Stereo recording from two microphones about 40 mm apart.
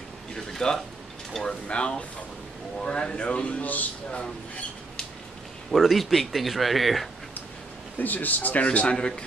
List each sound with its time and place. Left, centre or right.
0.5 s a sound: centre
1.4 s speech: left
5.7 s speech: centre
8.0 s a man's voice: left
8.6 s a man's voice: left
8.9 s speech: left